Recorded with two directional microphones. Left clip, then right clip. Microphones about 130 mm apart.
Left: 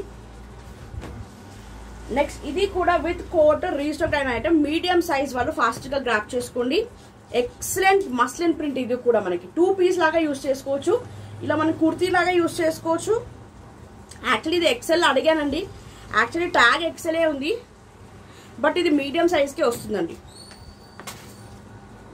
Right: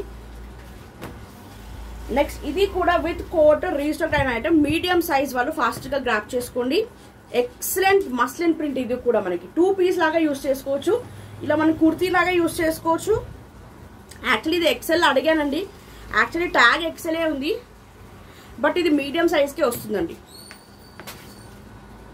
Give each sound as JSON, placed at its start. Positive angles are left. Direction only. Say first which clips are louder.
{"t": 2.1, "sound": "a woman's voice", "louder": "right 2 dB", "side_deg": -35}
{"t": 3.4, "sound": "a woman's voice", "louder": "right 5 dB", "side_deg": -10}
{"t": 14.2, "sound": "a woman's voice", "louder": "right 1 dB", "side_deg": -10}
{"t": 18.6, "sound": "a woman's voice", "louder": "even", "side_deg": -5}